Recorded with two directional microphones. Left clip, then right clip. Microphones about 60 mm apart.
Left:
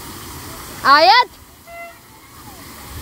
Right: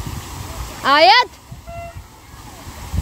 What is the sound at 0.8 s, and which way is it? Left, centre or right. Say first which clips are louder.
Speech: left 1 dB; right.